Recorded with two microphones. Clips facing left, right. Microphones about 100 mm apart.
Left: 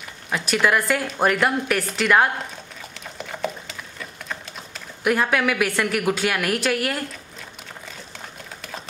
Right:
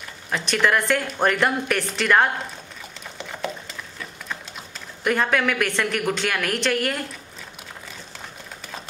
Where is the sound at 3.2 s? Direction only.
Centre (ahead or behind).